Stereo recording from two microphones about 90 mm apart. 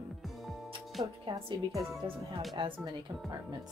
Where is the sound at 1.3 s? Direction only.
80° right.